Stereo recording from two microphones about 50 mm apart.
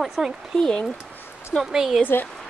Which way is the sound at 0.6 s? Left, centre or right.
Centre.